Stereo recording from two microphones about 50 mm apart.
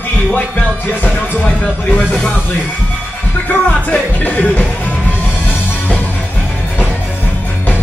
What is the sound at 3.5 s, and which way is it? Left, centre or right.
Music, left.